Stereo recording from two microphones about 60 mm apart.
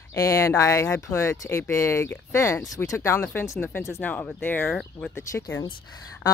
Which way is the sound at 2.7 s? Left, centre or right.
Left.